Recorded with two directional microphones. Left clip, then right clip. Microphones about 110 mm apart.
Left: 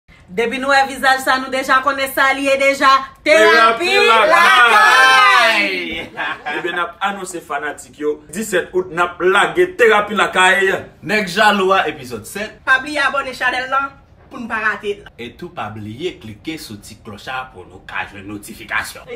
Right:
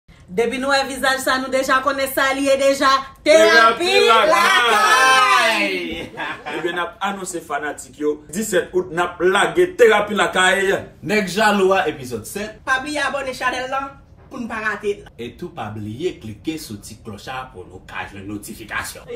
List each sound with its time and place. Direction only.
0.4 s a man's voice: centre (ahead or behind)
4.2 s a woman's voice: 20° left (ahead or behind)
4.8 s a sound: 20° left (ahead or behind)
6.2 s a man's voice: centre (ahead or behind)
11.1 s speech: 35° left (ahead or behind)
12.8 s a woman's voice: 15° left (ahead or behind)
15.1 s speech: 30° left (ahead or behind)